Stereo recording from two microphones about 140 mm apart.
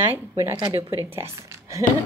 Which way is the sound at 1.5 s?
20° right (ahead or behind).